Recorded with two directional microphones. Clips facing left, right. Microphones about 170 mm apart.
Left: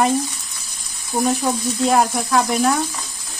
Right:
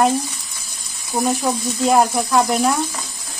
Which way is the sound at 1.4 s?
Centre (ahead or behind).